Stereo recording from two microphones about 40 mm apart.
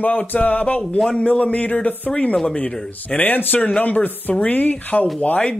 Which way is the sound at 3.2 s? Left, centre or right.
Left.